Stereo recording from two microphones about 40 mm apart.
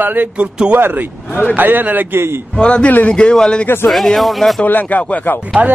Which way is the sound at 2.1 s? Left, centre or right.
Right.